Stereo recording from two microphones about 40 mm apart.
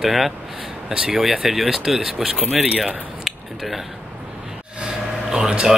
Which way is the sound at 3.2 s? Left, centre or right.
Centre.